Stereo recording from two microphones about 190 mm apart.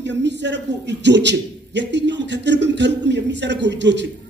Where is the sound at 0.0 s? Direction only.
65° right (ahead or behind).